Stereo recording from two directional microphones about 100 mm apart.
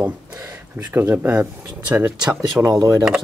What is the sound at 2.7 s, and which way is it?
Speech, 40° right (ahead or behind).